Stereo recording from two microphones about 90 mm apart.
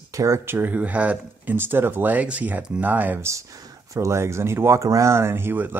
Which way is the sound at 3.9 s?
35° right (ahead or behind).